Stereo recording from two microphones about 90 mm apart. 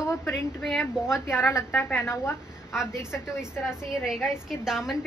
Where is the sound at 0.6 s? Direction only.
5° left (ahead or behind).